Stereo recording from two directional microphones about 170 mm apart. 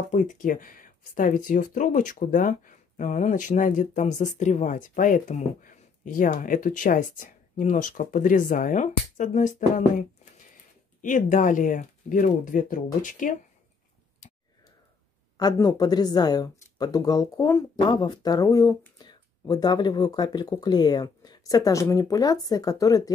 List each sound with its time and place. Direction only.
0.1 s speech: 50° left (ahead or behind)
14.2 s a sound: 45° left (ahead or behind)
15.3 s speech: 25° left (ahead or behind)